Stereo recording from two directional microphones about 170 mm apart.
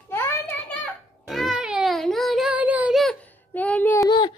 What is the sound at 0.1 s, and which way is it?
Child singing, 15° left (ahead or behind).